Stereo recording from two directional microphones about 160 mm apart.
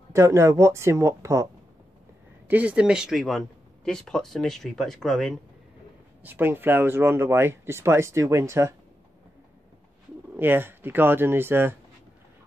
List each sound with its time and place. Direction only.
0.1 s speech: 20° right (ahead or behind)
2.4 s speech: 10° right (ahead or behind)
6.2 s speech: 15° right (ahead or behind)
10.3 s speech: 15° right (ahead or behind)